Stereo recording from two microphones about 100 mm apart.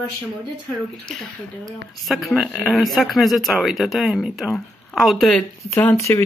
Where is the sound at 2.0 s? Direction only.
Centre (ahead or behind).